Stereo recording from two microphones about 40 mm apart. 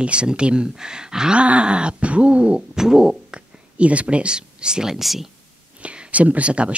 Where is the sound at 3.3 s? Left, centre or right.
Right.